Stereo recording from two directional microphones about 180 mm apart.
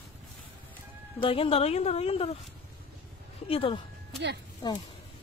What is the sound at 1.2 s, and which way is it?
Speech, 30° left (ahead or behind).